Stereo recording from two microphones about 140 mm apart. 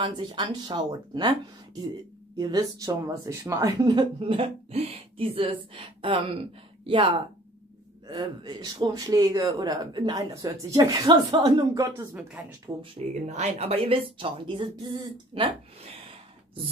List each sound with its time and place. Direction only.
0.0 s speech: 35° right (ahead or behind)
2.3 s speech: 30° right (ahead or behind)
12.4 s speech: 10° right (ahead or behind)
13.1 s speech: 55° right (ahead or behind)